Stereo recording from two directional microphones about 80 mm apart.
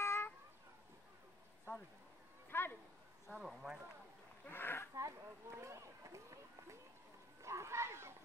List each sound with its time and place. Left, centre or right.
0.0 s cat: left
2.5 s a sound: left
3.3 s speech: centre
4.5 s speech: left
4.9 s run: right
7.4 s a sound: right